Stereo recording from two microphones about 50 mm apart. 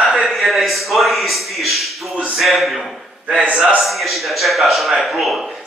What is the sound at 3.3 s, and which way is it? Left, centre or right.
Speech, right.